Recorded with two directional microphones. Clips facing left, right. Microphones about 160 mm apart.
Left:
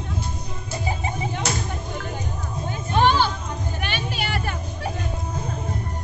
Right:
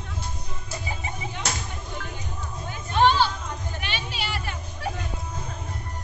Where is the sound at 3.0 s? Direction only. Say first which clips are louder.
Left 1 dB; 50° left (ahead or behind).